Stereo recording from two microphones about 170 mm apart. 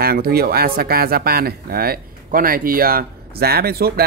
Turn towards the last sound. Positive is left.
turn(degrees=-65)  # may be behind; listen again after turning